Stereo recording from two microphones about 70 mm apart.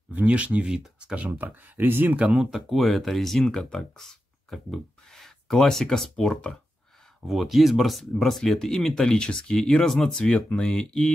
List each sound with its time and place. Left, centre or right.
0.1 s speech: centre
2.3 s speech: centre